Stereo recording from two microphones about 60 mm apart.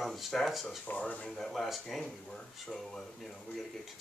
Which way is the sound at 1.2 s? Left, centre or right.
Centre.